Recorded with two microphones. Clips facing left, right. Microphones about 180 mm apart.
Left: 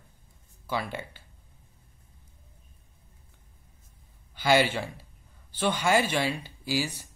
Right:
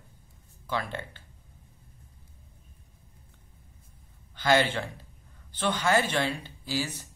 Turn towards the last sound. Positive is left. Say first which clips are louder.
# left 2 dB
turn(degrees=10)  # may be behind; listen again after turning